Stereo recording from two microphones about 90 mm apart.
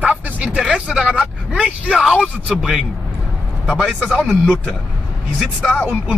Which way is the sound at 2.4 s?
5° right (ahead or behind).